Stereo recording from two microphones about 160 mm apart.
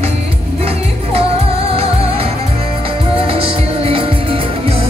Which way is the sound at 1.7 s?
35° right (ahead or behind).